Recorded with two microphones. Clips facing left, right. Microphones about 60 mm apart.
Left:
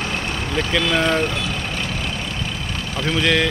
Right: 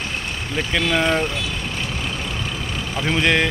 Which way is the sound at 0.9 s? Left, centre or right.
Centre.